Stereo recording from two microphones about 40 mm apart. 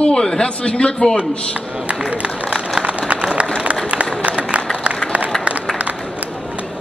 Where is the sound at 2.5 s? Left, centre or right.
Centre.